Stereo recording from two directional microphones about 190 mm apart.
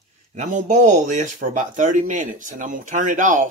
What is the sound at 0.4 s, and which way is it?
Speech, 40° right (ahead or behind).